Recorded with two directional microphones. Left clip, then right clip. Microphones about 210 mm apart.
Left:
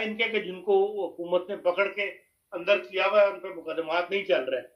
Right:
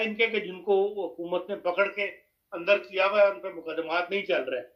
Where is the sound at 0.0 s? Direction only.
20° right (ahead or behind).